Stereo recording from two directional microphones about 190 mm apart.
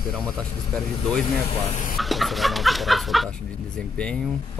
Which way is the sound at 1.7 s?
45° left (ahead or behind).